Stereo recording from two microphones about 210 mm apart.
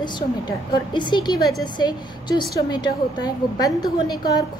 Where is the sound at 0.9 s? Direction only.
20° left (ahead or behind).